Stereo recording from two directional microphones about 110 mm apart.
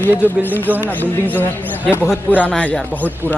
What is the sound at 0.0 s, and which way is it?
Speech, 20° left (ahead or behind).